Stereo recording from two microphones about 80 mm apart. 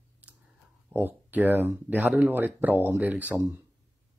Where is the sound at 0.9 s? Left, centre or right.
Right.